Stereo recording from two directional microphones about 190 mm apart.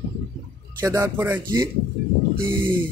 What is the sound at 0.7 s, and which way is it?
Speech, 20° right (ahead or behind).